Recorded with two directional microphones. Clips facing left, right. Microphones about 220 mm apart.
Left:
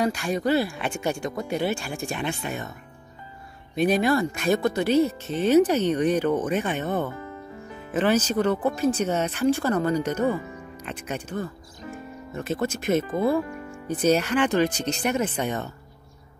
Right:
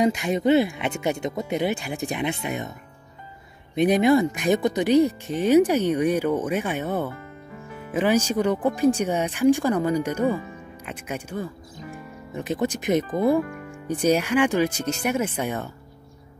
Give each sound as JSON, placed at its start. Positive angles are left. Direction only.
{"t": 0.0, "sound": "speech", "side_deg": -20}
{"t": 3.7, "sound": "speech", "side_deg": -20}